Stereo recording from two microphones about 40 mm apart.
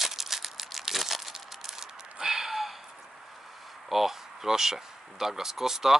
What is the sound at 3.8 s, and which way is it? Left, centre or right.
Speech, centre.